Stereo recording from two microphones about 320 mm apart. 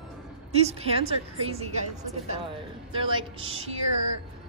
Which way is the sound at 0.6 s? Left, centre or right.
Centre.